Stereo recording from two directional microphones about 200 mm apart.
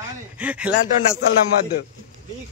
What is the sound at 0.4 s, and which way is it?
Speech, 5° right (ahead or behind).